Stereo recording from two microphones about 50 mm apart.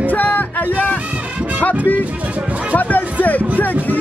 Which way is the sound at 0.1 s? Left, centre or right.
Left.